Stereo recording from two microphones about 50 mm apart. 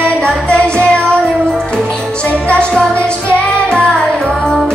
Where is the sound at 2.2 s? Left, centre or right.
Left.